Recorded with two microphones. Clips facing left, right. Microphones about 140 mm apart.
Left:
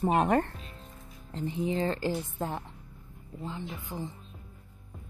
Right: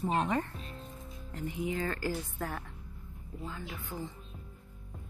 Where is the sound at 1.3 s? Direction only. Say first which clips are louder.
Left 5 dB; 30° left (ahead or behind).